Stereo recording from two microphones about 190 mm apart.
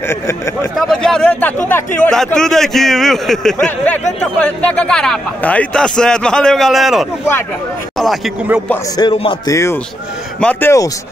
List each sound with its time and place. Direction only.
0.1 s speech: 15° left (ahead or behind)
0.7 s speech: centre (ahead or behind)
8.9 s speech: 25° left (ahead or behind)
9.5 s speech: 15° left (ahead or behind)